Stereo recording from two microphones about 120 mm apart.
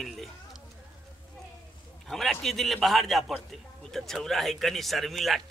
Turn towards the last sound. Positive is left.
turn(degrees=0)  # may be behind; listen again after turning